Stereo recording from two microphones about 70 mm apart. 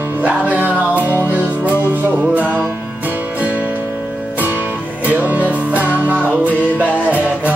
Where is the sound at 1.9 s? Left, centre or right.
Right.